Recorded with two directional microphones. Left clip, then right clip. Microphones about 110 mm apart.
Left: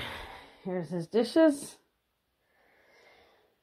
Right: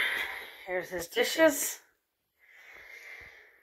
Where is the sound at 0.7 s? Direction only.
10° left (ahead or behind).